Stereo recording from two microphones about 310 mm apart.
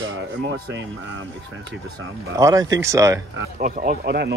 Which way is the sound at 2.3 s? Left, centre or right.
Centre.